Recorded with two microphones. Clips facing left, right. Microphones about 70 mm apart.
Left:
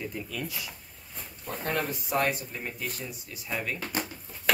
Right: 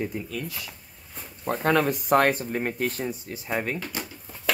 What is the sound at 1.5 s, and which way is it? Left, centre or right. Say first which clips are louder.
Speech: right 9 dB; right.